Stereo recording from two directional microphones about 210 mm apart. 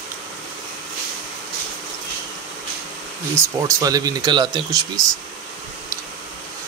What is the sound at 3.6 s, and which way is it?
Speech, 15° right (ahead or behind).